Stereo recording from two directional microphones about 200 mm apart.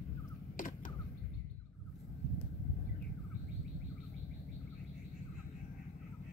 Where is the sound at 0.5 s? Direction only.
40° left (ahead or behind).